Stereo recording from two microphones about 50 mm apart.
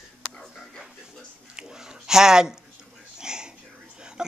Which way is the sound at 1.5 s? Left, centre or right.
Centre.